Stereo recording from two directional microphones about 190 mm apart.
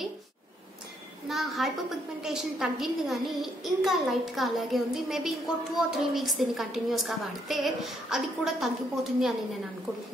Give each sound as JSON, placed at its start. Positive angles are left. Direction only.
{"t": 1.3, "sound": "a woman's voice", "side_deg": 0}